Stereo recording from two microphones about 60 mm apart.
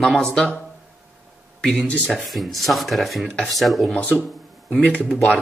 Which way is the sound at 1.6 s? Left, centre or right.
Centre.